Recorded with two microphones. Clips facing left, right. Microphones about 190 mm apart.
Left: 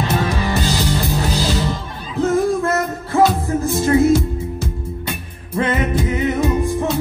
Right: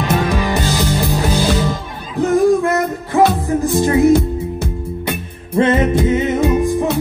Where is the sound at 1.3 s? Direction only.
55° right (ahead or behind).